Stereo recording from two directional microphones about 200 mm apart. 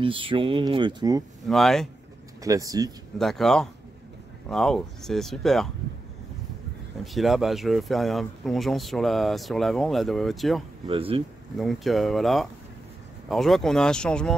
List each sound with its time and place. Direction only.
0.0 s speech: 25° right (ahead or behind)
1.5 s speech: centre (ahead or behind)
2.4 s speech: 15° right (ahead or behind)
3.2 s speech: centre (ahead or behind)
7.2 s speech: centre (ahead or behind)
10.9 s speech: 30° right (ahead or behind)
11.5 s speech: centre (ahead or behind)